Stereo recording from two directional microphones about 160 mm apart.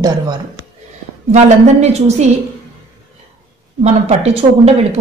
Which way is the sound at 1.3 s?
45° right (ahead or behind).